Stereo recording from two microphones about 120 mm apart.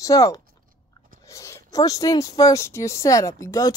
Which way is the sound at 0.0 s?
30° left (ahead or behind).